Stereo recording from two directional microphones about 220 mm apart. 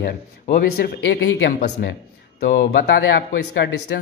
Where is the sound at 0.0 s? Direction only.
45° left (ahead or behind).